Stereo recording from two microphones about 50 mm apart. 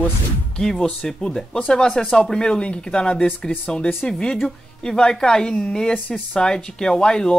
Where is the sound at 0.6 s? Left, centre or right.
Centre.